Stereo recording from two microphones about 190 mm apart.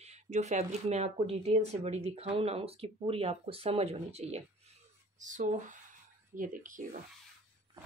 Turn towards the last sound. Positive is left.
turn(degrees=-45)  # may be behind; listen again after turning